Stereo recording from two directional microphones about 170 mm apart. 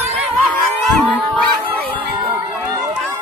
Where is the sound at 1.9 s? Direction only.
25° right (ahead or behind).